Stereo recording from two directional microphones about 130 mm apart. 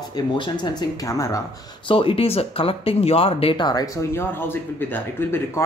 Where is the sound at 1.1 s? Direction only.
25° left (ahead or behind).